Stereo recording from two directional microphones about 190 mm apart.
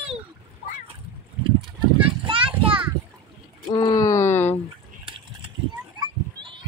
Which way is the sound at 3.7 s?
25° left (ahead or behind).